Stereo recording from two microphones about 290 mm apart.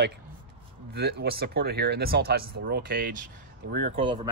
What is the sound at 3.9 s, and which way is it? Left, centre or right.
Cutlery, centre.